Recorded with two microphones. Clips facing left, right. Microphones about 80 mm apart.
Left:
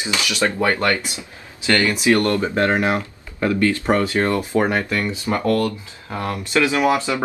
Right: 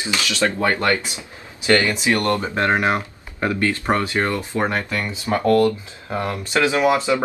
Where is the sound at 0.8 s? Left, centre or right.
Right.